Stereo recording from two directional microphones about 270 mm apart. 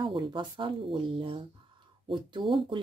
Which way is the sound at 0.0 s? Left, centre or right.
Centre.